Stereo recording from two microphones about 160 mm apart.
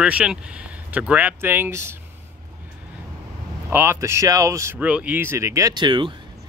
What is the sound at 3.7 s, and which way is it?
Speech, 15° right (ahead or behind).